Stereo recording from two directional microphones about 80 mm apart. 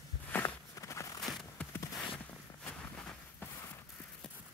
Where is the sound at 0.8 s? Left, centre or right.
Left.